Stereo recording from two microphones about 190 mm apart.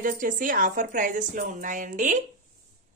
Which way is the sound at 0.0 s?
45° right (ahead or behind).